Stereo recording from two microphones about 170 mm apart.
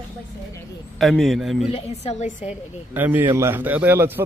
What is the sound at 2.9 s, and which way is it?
Speech, 10° right (ahead or behind).